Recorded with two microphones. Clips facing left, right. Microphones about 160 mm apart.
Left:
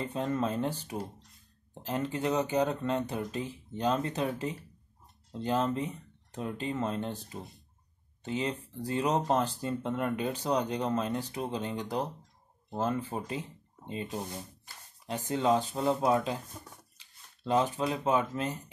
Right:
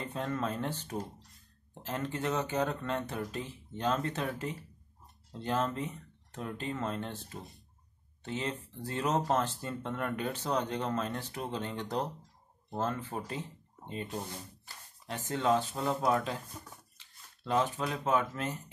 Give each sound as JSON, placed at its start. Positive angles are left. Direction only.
{"t": 0.1, "sound": "speech", "side_deg": 20}
{"t": 16.9, "sound": "a sound", "side_deg": 20}
{"t": 17.7, "sound": "speech", "side_deg": 20}